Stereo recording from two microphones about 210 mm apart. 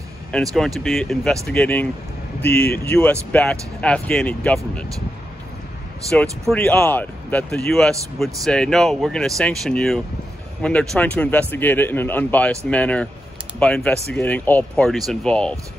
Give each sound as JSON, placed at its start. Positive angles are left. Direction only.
{"t": 0.6, "sound": "speech", "side_deg": 0}
{"t": 2.5, "sound": "speech", "side_deg": 50}
{"t": 2.9, "sound": "speech", "side_deg": 5}
{"t": 6.1, "sound": "speech", "side_deg": 5}